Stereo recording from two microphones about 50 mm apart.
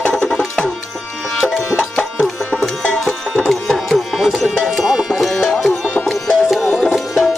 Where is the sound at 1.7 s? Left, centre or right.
Centre.